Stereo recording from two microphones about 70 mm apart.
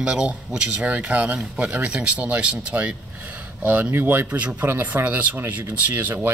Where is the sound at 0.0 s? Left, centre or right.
Centre.